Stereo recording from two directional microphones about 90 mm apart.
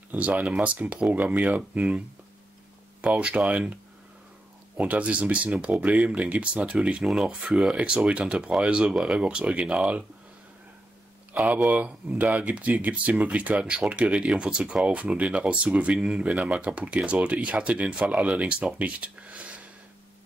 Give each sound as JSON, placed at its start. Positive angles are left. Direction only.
{"t": 0.1, "sound": "speech", "side_deg": -20}
{"t": 4.7, "sound": "speech", "side_deg": -15}
{"t": 11.3, "sound": "speech", "side_deg": -15}